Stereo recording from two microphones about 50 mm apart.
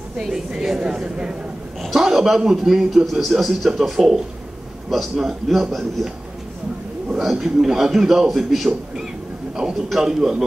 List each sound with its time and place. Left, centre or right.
0.2 s a man's voice: centre
2.0 s a man's voice: centre
7.2 s a man's voice: centre